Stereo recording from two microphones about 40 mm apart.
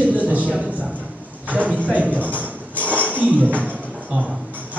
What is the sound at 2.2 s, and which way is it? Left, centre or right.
Music, right.